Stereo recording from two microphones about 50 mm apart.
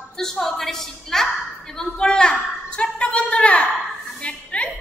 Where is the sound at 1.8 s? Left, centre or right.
Centre.